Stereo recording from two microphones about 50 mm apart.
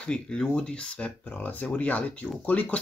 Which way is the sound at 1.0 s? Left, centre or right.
Left.